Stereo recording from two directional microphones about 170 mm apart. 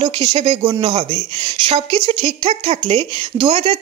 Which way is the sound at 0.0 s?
30° right (ahead or behind).